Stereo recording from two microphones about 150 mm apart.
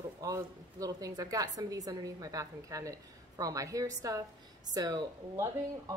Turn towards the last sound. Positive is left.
turn(degrees=-25)  # may be behind; listen again after turning